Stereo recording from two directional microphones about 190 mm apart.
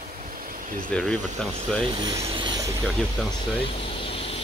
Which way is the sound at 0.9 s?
5° left (ahead or behind).